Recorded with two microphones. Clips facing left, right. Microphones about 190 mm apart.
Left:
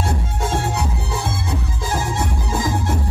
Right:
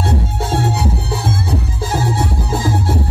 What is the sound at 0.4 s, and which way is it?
Music, 35° right (ahead or behind).